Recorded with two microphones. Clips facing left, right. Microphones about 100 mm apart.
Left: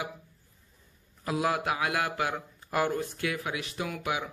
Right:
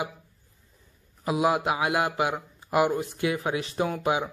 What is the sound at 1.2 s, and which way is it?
Speech, 20° right (ahead or behind).